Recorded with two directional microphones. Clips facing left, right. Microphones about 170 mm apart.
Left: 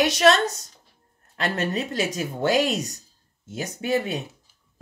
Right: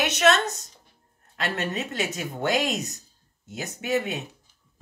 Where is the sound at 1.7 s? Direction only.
35° left (ahead or behind).